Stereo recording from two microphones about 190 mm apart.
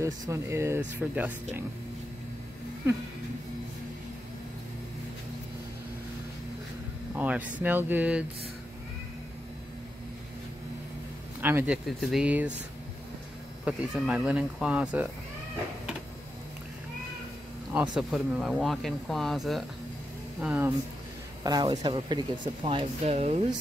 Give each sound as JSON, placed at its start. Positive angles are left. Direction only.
{"t": 0.0, "sound": "speech", "side_deg": -15}
{"t": 7.2, "sound": "speech", "side_deg": -10}
{"t": 11.4, "sound": "speech", "side_deg": -10}
{"t": 13.7, "sound": "speech", "side_deg": -5}
{"t": 17.7, "sound": "speech", "side_deg": -5}
{"t": 21.5, "sound": "speech", "side_deg": -20}